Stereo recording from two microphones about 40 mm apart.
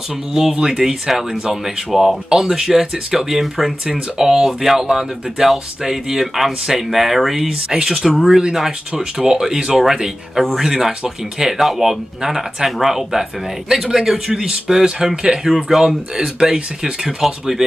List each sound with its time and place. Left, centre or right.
0.3 s speech: centre
7.4 s speech: centre
16.2 s speech: right